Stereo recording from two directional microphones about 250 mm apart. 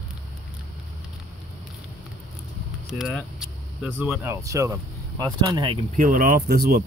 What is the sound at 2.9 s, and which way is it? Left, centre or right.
Speech, centre.